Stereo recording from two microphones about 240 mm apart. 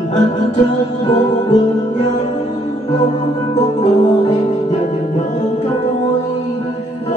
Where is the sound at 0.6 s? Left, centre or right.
Centre.